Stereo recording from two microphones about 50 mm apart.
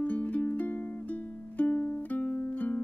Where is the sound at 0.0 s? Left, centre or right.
Left.